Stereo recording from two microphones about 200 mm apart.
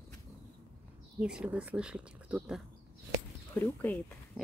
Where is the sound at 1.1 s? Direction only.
5° right (ahead or behind).